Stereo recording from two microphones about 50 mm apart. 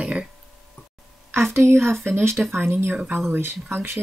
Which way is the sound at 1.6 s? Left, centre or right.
Right.